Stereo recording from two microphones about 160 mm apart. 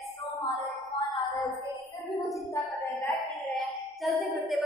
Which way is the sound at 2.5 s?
20° left (ahead or behind).